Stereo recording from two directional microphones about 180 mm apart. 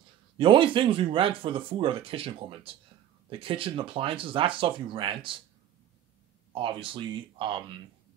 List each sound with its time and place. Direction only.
0.4 s speech: 30° right (ahead or behind)
6.5 s speech: 30° right (ahead or behind)